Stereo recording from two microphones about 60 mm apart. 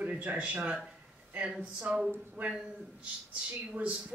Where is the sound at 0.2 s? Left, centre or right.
Right.